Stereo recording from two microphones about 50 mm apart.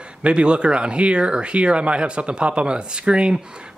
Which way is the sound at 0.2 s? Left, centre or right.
Right.